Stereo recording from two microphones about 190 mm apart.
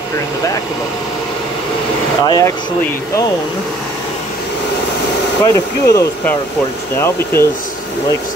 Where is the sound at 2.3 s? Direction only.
20° left (ahead or behind).